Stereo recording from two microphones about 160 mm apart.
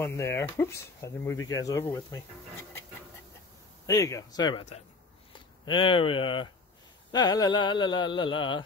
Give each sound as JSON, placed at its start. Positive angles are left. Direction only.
{"t": 0.0, "sound": "speech", "side_deg": 15}
{"t": 3.8, "sound": "speech", "side_deg": 20}
{"t": 5.7, "sound": "speech", "side_deg": 30}